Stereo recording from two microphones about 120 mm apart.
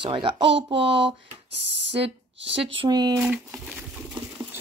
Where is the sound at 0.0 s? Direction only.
45° right (ahead or behind).